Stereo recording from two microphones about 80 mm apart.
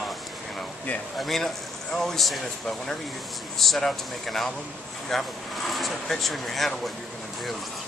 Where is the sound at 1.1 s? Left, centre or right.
Centre.